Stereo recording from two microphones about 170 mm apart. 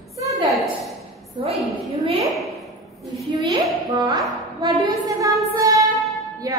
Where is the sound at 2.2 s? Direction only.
Centre (ahead or behind).